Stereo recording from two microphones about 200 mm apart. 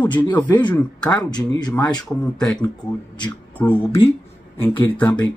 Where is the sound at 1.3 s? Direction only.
20° left (ahead or behind).